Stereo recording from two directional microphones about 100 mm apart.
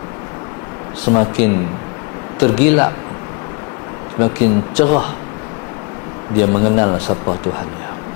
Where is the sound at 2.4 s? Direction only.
20° left (ahead or behind).